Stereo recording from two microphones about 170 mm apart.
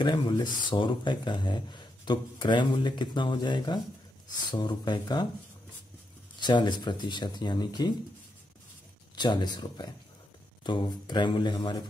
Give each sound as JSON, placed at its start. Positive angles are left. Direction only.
{"t": 0.0, "sound": "speech", "side_deg": 25}
{"t": 6.4, "sound": "speech", "side_deg": 25}
{"t": 9.1, "sound": "speech", "side_deg": 25}